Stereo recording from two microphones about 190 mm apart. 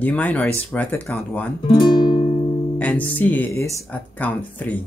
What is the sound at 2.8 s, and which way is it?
Speech, 10° left (ahead or behind).